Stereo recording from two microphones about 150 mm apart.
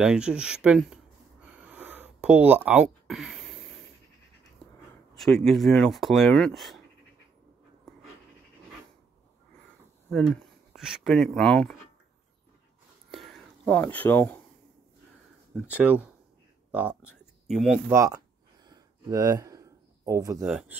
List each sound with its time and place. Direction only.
0.0 s speech: 5° right (ahead or behind)
1.4 s a sound: 10° right (ahead or behind)
5.1 s speech: centre (ahead or behind)
10.1 s speech: 5° left (ahead or behind)
13.1 s whispering: centre (ahead or behind)
13.7 s speech: 10° left (ahead or behind)
15.5 s speech: 10° right (ahead or behind)
16.7 s a sound: 10° right (ahead or behind)
17.8 s a sound: 20° right (ahead or behind)
20.4 s speech: 5° right (ahead or behind)